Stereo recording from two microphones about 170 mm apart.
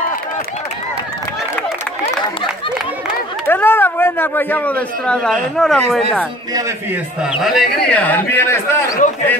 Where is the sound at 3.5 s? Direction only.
10° left (ahead or behind).